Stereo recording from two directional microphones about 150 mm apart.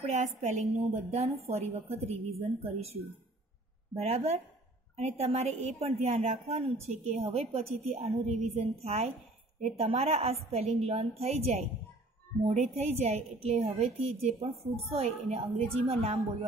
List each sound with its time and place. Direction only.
0.0 s a woman's voice: 50° right (ahead or behind)